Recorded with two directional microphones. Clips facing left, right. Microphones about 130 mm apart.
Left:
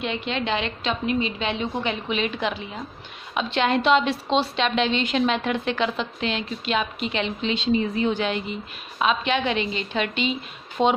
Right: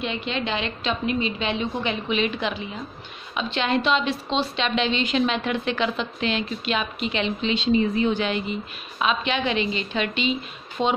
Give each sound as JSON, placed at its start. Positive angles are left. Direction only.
{"t": 0.0, "sound": "a woman's voice", "side_deg": 60}
{"t": 3.3, "sound": "a woman's voice", "side_deg": 55}
{"t": 10.8, "sound": "speech", "side_deg": 60}